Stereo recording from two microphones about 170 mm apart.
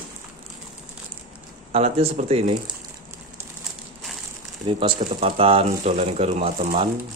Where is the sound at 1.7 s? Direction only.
40° right (ahead or behind).